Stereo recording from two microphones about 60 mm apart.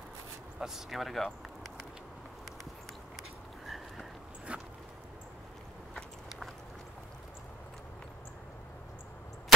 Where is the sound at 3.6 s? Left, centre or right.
Centre.